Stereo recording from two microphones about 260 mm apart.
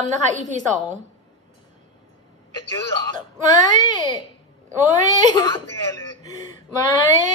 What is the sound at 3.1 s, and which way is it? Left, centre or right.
Speech, right.